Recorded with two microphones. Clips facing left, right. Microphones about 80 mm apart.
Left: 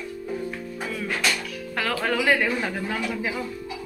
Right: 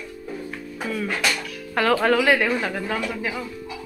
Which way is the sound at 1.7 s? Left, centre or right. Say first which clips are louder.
Right 7 dB; centre.